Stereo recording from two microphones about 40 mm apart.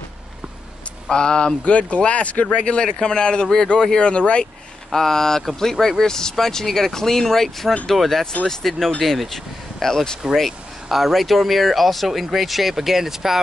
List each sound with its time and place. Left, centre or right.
1.1 s speech: left
1.6 s speech: left
4.9 s speech: centre